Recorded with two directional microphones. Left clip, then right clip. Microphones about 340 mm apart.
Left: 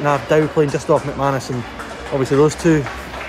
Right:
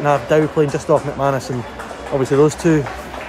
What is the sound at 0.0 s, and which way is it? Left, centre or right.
Speech, centre.